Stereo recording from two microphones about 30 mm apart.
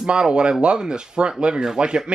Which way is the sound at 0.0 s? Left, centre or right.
Right.